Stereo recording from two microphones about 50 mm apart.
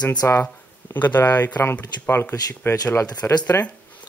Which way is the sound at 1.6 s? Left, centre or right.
Left.